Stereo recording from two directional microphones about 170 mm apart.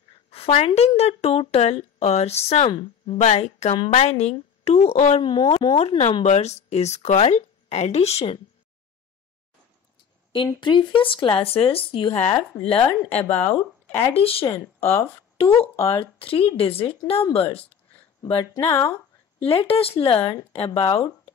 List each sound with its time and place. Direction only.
0.3 s a woman's voice: 35° left (ahead or behind)
10.3 s a woman's voice: 30° left (ahead or behind)
14.8 s speech: 15° left (ahead or behind)
15.3 s a woman's voice: 30° left (ahead or behind)
18.2 s speech: 25° left (ahead or behind)
19.4 s a woman's voice: 35° left (ahead or behind)